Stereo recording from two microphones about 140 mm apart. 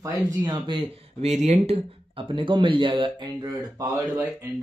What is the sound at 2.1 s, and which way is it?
Speech, 40° right (ahead or behind).